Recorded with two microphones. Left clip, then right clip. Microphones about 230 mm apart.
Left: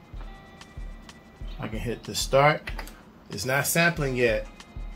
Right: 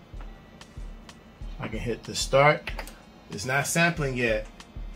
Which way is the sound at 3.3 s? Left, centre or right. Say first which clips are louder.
Left 1 dB; left.